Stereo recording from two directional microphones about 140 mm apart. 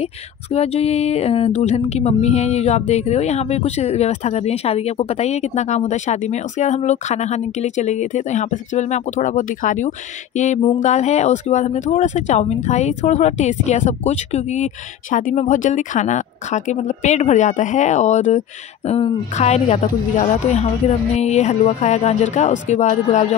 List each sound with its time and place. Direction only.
0.0 s speech: 50° left (ahead or behind)
18.9 s speech: 45° left (ahead or behind)